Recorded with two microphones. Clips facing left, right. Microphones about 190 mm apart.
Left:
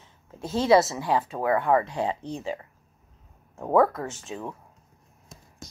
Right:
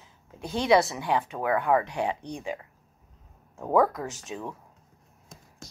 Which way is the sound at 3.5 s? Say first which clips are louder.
Left 2 dB; centre (ahead or behind).